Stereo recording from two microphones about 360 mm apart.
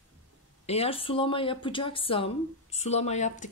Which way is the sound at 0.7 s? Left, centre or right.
Centre.